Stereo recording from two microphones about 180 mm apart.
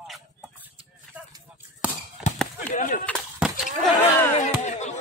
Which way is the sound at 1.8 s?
5° right (ahead or behind).